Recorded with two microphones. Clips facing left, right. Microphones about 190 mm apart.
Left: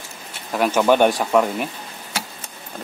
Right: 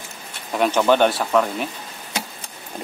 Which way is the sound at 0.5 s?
5° left (ahead or behind).